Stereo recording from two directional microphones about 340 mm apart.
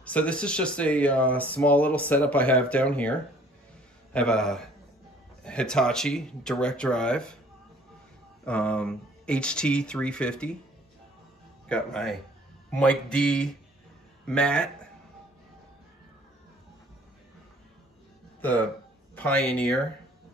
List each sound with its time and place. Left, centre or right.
0.0 s speech: centre
8.5 s speech: centre
11.7 s speech: centre
18.4 s speech: centre